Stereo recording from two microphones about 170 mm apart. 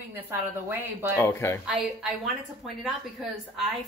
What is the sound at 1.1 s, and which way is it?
Speech, 15° left (ahead or behind).